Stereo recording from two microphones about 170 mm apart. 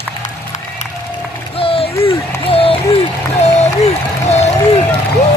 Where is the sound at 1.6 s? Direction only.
35° left (ahead or behind).